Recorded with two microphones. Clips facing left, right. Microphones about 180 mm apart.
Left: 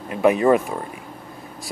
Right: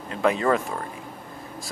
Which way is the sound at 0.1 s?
20° left (ahead or behind).